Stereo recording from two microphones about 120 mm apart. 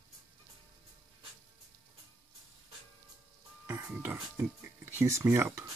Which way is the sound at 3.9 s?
15° right (ahead or behind).